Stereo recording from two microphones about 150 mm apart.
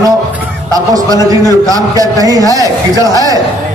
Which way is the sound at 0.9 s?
25° right (ahead or behind).